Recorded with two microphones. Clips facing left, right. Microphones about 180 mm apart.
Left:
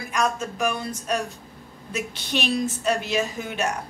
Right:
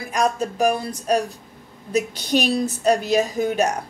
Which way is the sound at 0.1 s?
35° right (ahead or behind).